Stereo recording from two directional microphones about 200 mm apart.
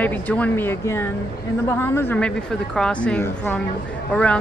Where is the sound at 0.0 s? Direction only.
5° left (ahead or behind).